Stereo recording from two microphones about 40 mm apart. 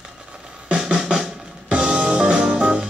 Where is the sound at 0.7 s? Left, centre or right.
Right.